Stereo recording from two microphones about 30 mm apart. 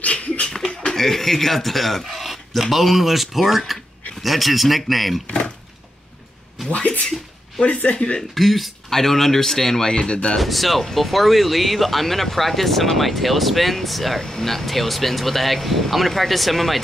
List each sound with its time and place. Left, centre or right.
0.0 s a sound: left
0.9 s speech: centre
6.7 s speech: left
7.9 s speech: left
8.4 s speech: centre
8.9 s speech: centre
9.8 s speech: left
10.4 s speech: centre
10.8 s speech: centre
11.1 s speech: centre
14.2 s speech: centre